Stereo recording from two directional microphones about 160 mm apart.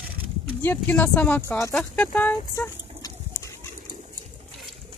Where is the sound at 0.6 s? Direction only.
15° left (ahead or behind).